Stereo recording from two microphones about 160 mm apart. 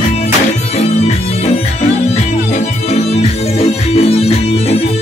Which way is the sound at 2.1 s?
45° left (ahead or behind).